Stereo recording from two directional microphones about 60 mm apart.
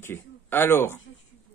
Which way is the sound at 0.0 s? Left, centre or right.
Left.